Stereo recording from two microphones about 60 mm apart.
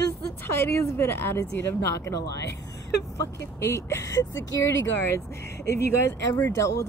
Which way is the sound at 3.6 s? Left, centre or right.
Left.